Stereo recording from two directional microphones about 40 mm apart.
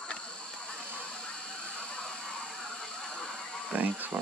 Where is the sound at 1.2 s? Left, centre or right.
Left.